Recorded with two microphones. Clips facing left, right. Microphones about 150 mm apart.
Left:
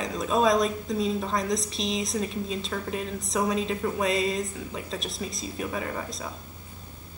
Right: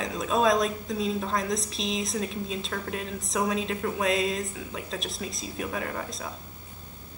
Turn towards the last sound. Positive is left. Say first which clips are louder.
# left 1 dB
turn(degrees=0)  # may be behind; listen again after turning